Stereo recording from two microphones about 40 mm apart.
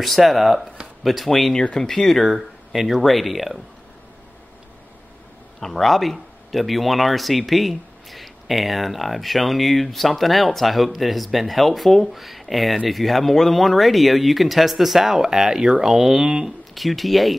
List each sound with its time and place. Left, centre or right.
0.0 s speech: centre
1.5 s speech: left
1.8 s speech: centre
2.3 s speech: centre
5.6 s speech: centre
16.7 s speech: centre